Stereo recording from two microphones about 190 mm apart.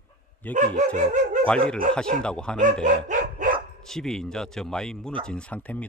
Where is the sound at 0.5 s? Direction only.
40° right (ahead or behind).